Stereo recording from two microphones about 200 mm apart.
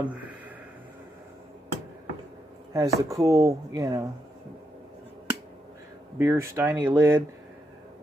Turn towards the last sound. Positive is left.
turn(degrees=-10)  # may be behind; listen again after turning